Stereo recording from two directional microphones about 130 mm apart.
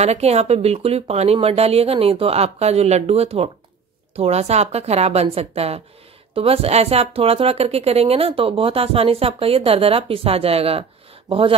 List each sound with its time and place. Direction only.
0.0 s speech: 55° right (ahead or behind)